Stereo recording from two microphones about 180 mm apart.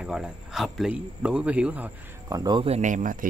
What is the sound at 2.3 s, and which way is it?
Speech, 25° right (ahead or behind).